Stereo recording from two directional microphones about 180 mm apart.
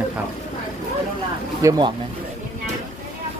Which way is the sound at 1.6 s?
20° right (ahead or behind).